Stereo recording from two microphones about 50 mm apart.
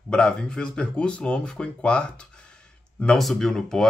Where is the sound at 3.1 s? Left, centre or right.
Centre.